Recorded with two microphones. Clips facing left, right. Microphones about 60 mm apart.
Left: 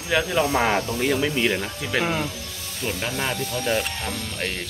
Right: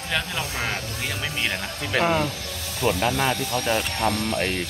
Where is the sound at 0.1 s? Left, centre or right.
Centre.